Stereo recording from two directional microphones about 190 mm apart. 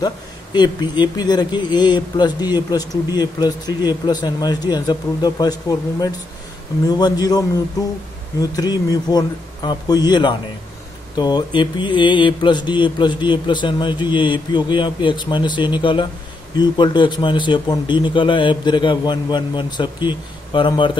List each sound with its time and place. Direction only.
0.0 s speech: 20° left (ahead or behind)